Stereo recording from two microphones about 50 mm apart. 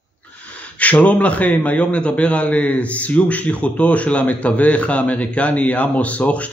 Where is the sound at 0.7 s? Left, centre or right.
Left.